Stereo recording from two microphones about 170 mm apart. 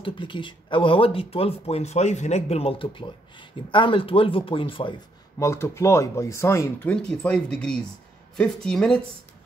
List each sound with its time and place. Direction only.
0.0 s speech: 30° left (ahead or behind)
5.4 s speech: 15° left (ahead or behind)